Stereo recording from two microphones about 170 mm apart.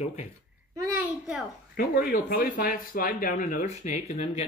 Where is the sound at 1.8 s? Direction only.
60° left (ahead or behind).